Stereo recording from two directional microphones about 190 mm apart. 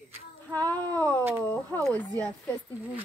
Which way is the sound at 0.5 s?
10° left (ahead or behind).